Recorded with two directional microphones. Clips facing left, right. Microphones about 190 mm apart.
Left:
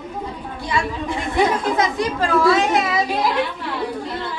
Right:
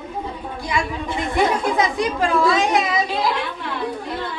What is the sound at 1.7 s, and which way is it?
Speech, 15° right (ahead or behind).